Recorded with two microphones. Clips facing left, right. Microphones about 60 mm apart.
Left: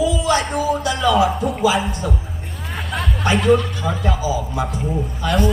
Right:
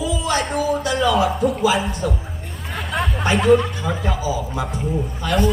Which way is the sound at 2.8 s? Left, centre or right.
Centre.